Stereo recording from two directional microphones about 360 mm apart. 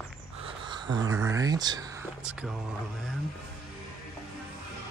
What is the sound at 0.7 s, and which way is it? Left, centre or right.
Speech, centre.